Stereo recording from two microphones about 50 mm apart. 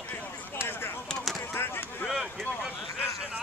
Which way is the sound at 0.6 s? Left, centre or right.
Left.